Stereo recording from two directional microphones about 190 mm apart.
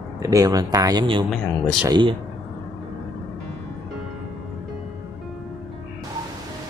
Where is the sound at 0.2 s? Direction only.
20° right (ahead or behind).